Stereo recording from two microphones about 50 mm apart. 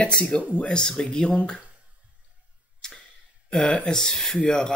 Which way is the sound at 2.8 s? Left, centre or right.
Centre.